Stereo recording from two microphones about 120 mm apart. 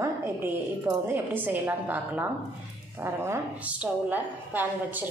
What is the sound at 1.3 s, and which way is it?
A woman's voice, 15° right (ahead or behind).